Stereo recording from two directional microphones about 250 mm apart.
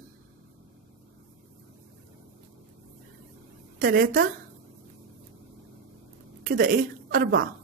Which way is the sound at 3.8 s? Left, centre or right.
Right.